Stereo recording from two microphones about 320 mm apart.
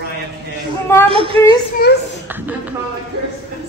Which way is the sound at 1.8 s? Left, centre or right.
Left.